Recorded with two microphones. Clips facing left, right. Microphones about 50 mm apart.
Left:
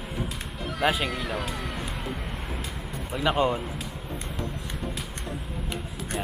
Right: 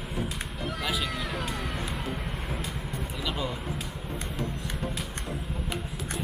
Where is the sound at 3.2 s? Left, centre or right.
Left.